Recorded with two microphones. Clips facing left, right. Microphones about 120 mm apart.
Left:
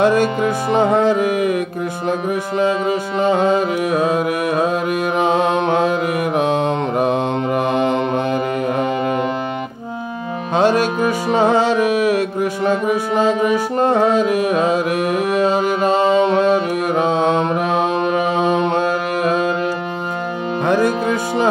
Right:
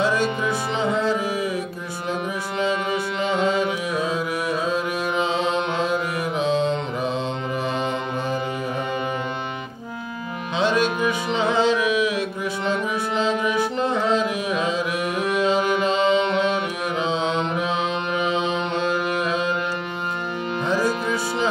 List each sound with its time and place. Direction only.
0.0 s music: 45° left (ahead or behind)
2.6 s music: 50° left (ahead or behind)
10.5 s music: 45° left (ahead or behind)
20.6 s music: 55° left (ahead or behind)